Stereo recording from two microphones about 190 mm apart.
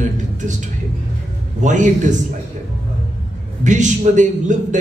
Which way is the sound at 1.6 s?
40° right (ahead or behind).